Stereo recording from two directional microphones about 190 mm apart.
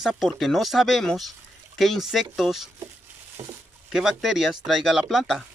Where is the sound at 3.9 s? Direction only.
5° right (ahead or behind).